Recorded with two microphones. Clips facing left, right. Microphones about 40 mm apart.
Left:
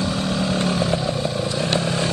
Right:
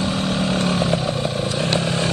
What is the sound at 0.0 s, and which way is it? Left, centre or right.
Vehicle, right.